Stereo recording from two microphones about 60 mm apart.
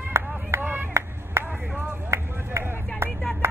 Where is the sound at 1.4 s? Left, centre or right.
Right.